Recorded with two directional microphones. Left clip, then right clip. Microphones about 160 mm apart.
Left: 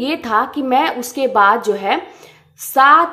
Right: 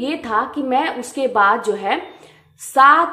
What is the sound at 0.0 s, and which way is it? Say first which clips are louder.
A woman's voice: left 3 dB; 25° left (ahead or behind).